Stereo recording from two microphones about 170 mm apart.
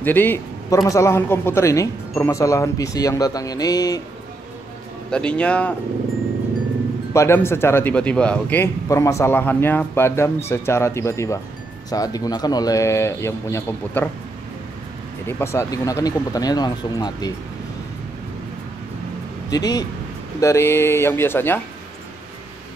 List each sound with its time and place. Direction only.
0.0 s a man's voice: 10° left (ahead or behind)
5.1 s a man's voice: 5° left (ahead or behind)
7.2 s a man's voice: 15° left (ahead or behind)
15.2 s speech: 15° left (ahead or behind)
19.5 s a man's voice: 20° left (ahead or behind)